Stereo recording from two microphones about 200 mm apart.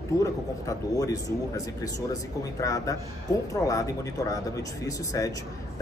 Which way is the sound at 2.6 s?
15° left (ahead or behind).